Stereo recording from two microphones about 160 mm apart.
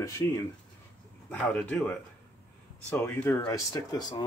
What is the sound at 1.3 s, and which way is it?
Speech, 10° left (ahead or behind).